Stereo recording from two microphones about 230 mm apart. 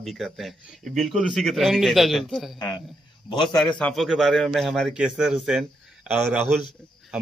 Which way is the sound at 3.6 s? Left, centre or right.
Centre.